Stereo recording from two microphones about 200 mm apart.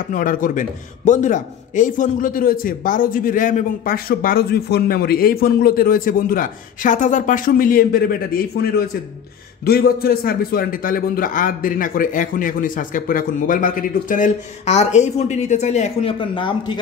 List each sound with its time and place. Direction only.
0.1 s a man's voice: 40° left (ahead or behind); by 16.8 s 25° left (ahead or behind)